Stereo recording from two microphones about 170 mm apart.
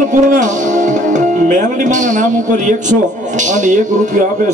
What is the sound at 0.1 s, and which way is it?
Music, 50° right (ahead or behind).